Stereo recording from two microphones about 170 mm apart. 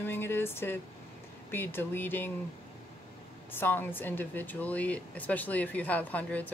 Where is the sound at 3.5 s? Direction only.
10° left (ahead or behind).